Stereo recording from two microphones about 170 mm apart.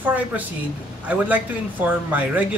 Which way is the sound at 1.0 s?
10° right (ahead or behind).